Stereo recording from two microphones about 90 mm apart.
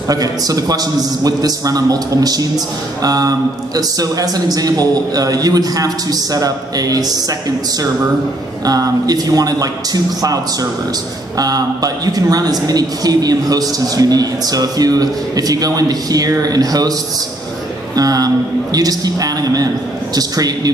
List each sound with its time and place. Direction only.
0.1 s a man's voice: 45° right (ahead or behind)
17.9 s a man's voice: 45° right (ahead or behind)